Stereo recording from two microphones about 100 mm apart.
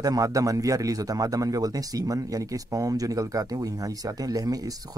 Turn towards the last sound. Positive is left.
turn(degrees=-40)  # may be behind; listen again after turning